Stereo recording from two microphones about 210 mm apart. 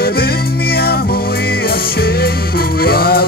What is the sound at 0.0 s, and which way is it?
Music, 45° left (ahead or behind).